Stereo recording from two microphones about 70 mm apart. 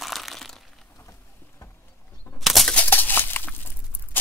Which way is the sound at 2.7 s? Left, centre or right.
Left.